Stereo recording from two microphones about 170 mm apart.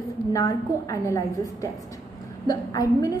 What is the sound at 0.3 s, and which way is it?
A woman's voice, 20° left (ahead or behind).